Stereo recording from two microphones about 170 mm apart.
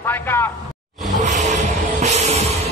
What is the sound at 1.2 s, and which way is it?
Music, 45° right (ahead or behind).